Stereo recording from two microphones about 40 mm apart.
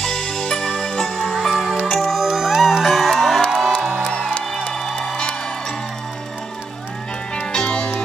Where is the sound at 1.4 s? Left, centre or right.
Centre.